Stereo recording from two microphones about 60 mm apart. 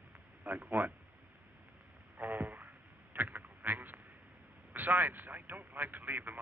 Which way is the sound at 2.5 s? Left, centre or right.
Right.